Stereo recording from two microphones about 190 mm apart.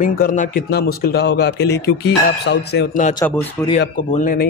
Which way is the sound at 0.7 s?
55° left (ahead or behind).